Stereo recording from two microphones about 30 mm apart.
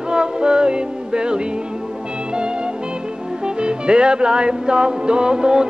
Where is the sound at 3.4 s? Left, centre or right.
Right.